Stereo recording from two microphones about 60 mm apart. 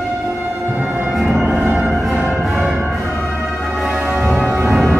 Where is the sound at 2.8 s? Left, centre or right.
Right.